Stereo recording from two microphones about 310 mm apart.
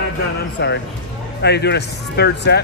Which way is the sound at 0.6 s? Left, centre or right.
Left.